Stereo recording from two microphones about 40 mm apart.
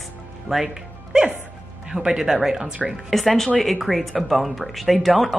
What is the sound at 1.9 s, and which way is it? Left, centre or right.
Speech, centre.